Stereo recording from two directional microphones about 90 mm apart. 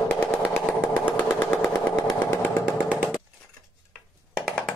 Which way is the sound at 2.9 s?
15° right (ahead or behind).